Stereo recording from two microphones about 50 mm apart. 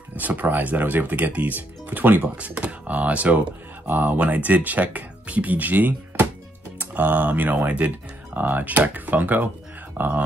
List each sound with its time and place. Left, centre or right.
0.1 s speech: right
2.3 s speech: right